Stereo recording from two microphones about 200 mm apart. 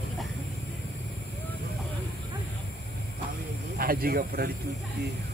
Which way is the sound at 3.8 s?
50° right (ahead or behind).